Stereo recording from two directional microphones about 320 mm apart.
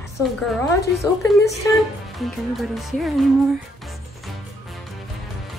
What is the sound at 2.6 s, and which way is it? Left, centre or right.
Speech, centre.